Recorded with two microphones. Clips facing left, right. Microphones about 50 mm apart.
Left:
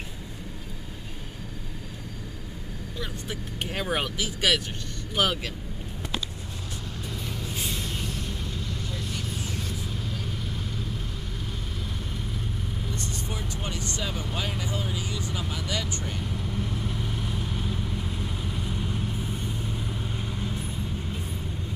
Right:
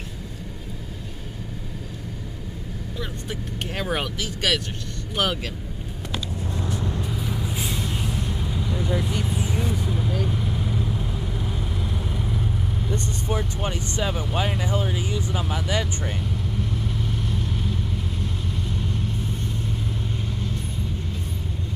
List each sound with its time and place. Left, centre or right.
3.0 s speech: centre
7.1 s vehicle: centre
12.9 s vehicle: right
14.1 s speech: centre
16.2 s vehicle: centre